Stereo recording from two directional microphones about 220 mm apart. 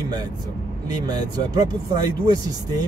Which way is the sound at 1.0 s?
20° right (ahead or behind).